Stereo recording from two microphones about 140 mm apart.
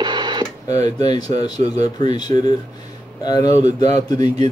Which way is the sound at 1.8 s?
30° left (ahead or behind).